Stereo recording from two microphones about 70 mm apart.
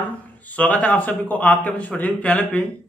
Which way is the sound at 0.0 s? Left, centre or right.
Left.